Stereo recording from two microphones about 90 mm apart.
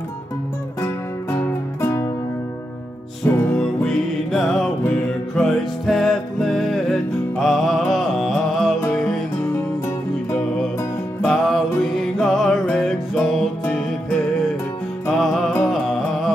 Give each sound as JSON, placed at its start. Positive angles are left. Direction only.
{"t": 1.3, "sound": "music", "side_deg": 25}
{"t": 3.3, "sound": "music", "side_deg": 25}
{"t": 3.5, "sound": "music", "side_deg": 5}
{"t": 11.2, "sound": "music", "side_deg": 0}
{"t": 15.0, "sound": "music", "side_deg": 0}